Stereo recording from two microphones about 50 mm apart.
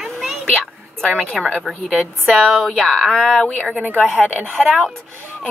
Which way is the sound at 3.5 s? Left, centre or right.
Centre.